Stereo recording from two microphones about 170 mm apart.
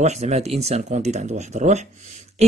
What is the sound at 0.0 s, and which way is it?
Speech, 40° right (ahead or behind).